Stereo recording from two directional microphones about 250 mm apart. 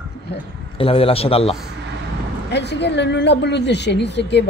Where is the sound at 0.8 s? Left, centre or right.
Left.